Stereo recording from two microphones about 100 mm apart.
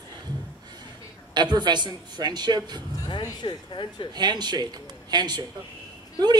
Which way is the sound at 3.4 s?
55° left (ahead or behind).